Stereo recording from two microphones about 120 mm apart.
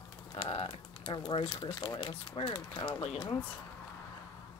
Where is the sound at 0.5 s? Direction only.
50° left (ahead or behind).